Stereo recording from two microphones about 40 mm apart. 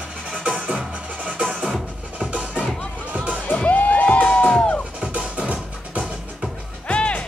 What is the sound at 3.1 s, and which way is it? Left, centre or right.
Music, right.